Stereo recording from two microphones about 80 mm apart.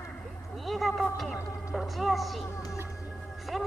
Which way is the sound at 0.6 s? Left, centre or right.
Centre.